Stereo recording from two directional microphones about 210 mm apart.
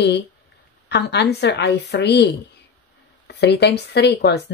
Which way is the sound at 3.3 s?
55° left (ahead or behind).